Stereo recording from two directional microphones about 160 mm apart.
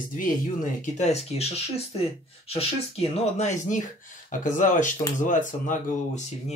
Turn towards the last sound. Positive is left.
turn(degrees=45)  # may be behind; listen again after turning